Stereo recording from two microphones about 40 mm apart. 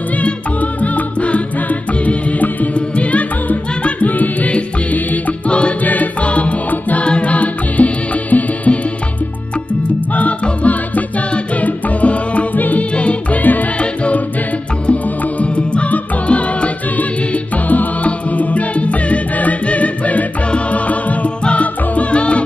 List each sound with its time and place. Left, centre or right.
0.2 s music: left
5.5 s music: left
10.4 s music: left
12.9 s music: left
13.4 s music: left
13.7 s music: left